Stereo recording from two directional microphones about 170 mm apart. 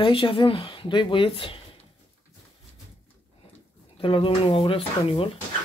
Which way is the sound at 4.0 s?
30° left (ahead or behind).